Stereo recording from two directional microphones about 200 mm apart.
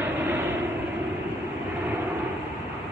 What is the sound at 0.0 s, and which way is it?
Vehicle, 10° right (ahead or behind).